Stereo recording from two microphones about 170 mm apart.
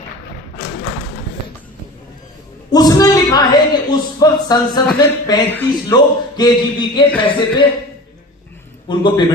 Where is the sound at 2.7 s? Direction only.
25° left (ahead or behind).